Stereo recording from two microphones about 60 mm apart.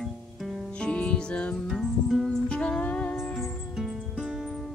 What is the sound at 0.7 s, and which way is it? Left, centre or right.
Music, centre.